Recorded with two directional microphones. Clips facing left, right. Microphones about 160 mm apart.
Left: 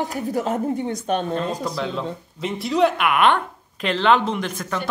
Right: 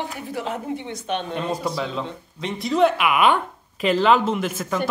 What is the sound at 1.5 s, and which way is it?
Speech, 5° right (ahead or behind).